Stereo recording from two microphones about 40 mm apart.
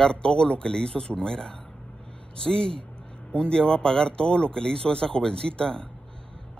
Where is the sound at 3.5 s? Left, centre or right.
Centre.